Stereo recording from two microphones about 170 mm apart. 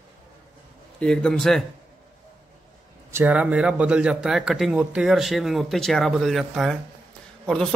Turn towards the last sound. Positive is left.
turn(degrees=5)  # may be behind; listen again after turning